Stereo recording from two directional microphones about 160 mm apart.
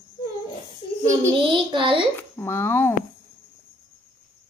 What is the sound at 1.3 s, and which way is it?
Speech, 30° right (ahead or behind).